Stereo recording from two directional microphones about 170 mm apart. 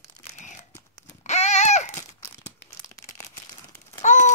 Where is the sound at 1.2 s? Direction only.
40° left (ahead or behind).